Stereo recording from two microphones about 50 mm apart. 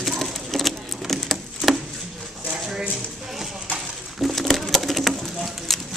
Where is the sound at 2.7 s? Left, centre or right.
Centre.